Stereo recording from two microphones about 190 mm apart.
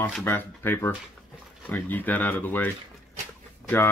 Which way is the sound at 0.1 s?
10° left (ahead or behind).